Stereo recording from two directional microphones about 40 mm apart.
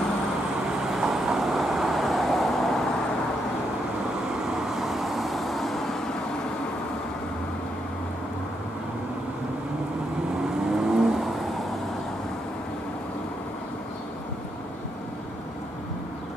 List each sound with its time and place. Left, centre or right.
0.9 s vehicle: centre
4.6 s vehicle: centre
10.7 s vehicle: centre